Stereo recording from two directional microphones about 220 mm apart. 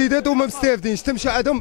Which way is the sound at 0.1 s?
15° left (ahead or behind).